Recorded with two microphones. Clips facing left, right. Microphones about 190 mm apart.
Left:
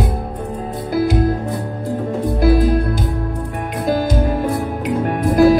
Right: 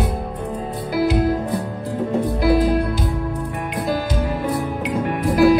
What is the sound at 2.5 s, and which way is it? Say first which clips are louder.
Music: left 1 dB; 50° left (ahead or behind).